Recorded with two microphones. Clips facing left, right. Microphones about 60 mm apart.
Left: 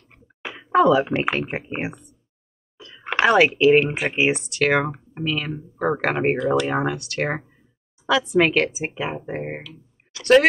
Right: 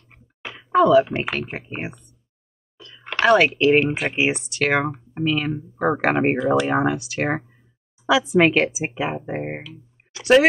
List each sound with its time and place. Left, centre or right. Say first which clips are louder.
0.4 s speech: even; centre
2.8 s a sound: left 2 dB; centre
3.3 s speech: even; centre
10.1 s speech: right 1 dB; right